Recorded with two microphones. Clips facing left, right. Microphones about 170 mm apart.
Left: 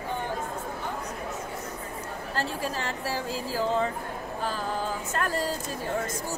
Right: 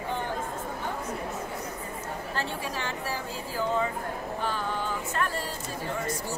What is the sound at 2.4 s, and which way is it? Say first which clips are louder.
A woman's voice: left 4 dB; 35° left (ahead or behind).